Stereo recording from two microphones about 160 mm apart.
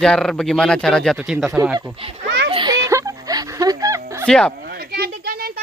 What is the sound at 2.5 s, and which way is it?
Music, 25° right (ahead or behind).